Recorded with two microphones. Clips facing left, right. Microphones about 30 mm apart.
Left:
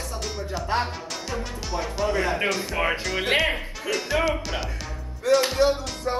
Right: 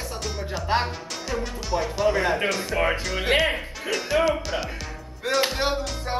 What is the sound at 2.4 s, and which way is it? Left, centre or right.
Music, centre.